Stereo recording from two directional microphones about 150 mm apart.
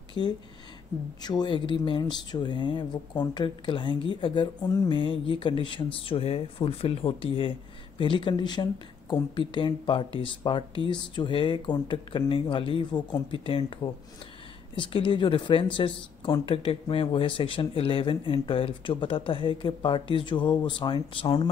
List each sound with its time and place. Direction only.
0.2 s speech: 30° left (ahead or behind)
14.8 s speech: 35° left (ahead or behind)